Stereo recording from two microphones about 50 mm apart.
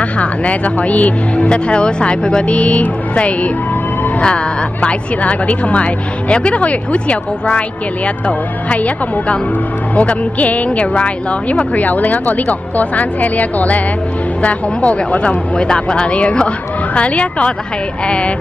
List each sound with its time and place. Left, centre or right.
0.0 s a woman's voice: left
4.8 s a woman's voice: left